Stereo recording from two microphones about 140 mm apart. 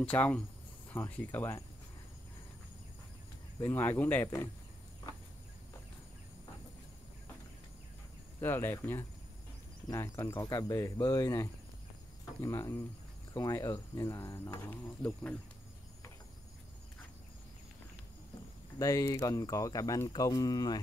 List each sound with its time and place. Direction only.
0.0 s speech: 10° left (ahead or behind)
3.6 s speech: 15° left (ahead or behind)
8.4 s speech: 15° left (ahead or behind)
18.8 s speech: 25° left (ahead or behind)